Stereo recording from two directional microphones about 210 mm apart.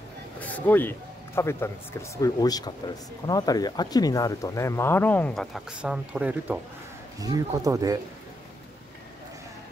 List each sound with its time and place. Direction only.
0.4 s speech: 5° left (ahead or behind)
7.2 s speech: 15° right (ahead or behind)